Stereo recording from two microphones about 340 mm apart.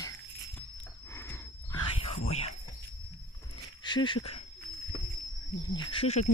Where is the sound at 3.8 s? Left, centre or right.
Centre.